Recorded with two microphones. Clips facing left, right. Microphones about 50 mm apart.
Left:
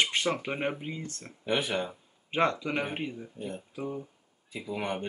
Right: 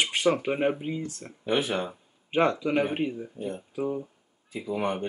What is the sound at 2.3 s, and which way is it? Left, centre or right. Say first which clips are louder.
Speech: right 4 dB; centre.